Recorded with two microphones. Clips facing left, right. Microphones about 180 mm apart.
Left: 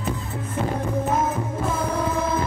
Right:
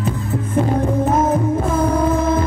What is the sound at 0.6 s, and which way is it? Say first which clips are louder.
Music: right 8 dB; 55° right (ahead or behind).